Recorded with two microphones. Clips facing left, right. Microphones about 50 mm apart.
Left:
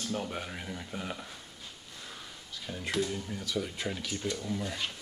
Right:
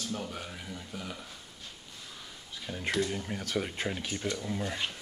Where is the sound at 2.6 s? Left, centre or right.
Centre.